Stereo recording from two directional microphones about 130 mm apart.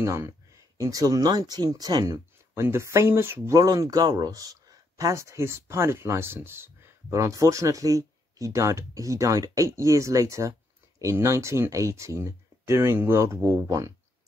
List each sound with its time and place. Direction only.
0.0 s speech: 20° right (ahead or behind)